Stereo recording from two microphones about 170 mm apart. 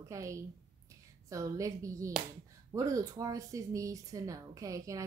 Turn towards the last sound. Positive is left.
turn(degrees=-20)  # may be behind; listen again after turning